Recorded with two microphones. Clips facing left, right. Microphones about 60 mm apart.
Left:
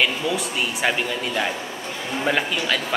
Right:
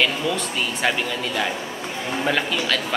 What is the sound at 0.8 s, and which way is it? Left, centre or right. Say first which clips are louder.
Speech: even; centre.